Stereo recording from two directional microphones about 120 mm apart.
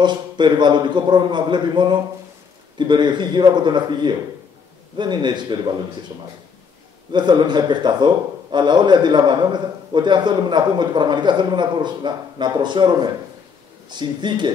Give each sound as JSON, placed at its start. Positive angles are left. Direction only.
{"t": 0.0, "sound": "a man's voice", "side_deg": -40}
{"t": 7.1, "sound": "a man's voice", "side_deg": -40}